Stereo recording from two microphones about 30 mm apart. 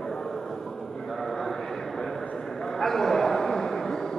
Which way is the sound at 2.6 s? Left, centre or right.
Centre.